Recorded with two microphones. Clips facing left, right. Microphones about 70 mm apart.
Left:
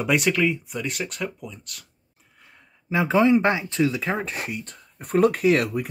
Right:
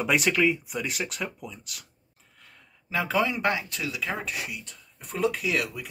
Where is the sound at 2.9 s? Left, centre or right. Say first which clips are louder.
Left 8 dB; left.